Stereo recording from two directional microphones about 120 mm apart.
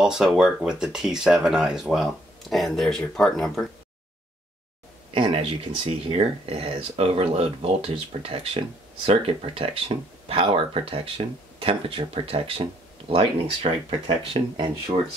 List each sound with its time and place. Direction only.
0.0 s speech: 5° right (ahead or behind)
5.1 s speech: 55° right (ahead or behind)